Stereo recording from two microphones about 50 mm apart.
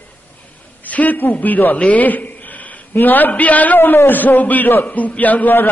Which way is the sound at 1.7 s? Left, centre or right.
Left.